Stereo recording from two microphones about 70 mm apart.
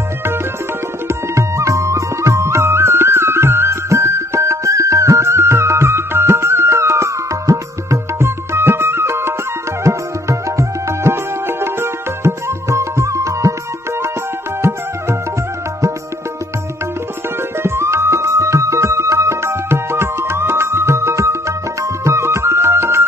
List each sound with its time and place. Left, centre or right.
1.0 s music: right
17.6 s music: right